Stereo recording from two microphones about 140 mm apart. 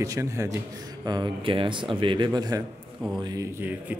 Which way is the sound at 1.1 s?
35° right (ahead or behind).